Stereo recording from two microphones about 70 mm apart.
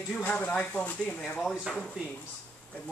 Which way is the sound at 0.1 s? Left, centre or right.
Left.